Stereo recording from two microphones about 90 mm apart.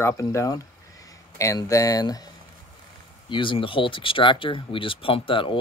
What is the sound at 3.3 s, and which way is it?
Speech, 65° left (ahead or behind).